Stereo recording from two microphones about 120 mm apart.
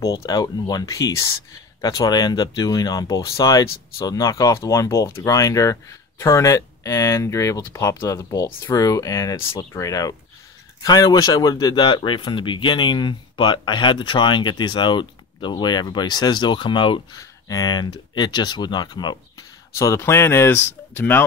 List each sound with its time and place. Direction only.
0.0 s speech: 30° left (ahead or behind)
17.2 s speech: 30° left (ahead or behind)